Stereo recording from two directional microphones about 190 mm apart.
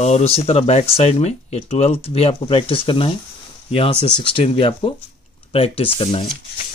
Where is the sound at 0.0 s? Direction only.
35° left (ahead or behind).